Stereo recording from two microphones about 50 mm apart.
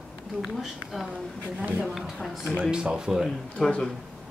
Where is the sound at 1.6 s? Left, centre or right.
Right.